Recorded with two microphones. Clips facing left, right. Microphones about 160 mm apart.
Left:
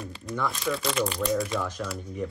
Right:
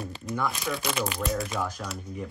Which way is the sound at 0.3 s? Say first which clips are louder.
Left 1 dB; centre (ahead or behind).